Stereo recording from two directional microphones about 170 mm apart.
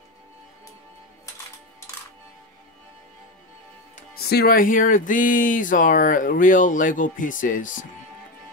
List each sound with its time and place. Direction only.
4.2 s speech: 70° left (ahead or behind); by 7.8 s 50° left (ahead or behind)